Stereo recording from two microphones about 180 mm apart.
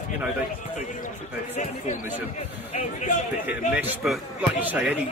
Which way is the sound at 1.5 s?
40° left (ahead or behind).